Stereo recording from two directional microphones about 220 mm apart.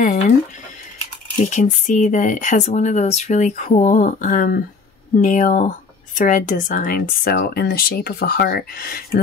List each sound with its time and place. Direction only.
1.3 s speech: 35° left (ahead or behind)